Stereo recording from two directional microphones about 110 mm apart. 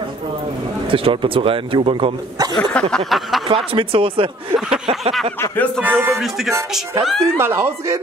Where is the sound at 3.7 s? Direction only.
55° right (ahead or behind).